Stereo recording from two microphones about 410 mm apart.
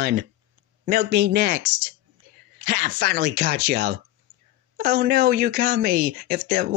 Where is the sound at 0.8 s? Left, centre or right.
Right.